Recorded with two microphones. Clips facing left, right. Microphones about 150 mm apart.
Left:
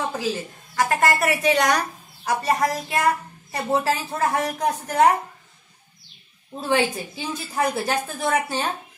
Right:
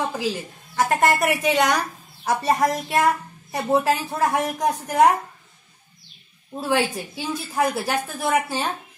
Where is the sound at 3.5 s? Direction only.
15° right (ahead or behind).